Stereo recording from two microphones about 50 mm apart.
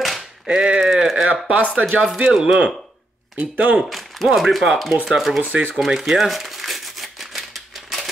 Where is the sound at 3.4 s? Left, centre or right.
Right.